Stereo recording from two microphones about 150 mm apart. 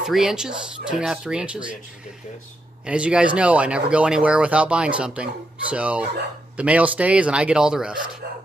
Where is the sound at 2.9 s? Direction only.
5° right (ahead or behind).